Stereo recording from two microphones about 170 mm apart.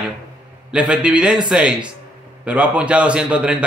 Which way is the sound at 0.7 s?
5° right (ahead or behind).